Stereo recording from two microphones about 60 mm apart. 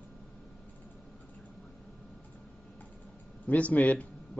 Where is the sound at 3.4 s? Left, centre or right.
Left.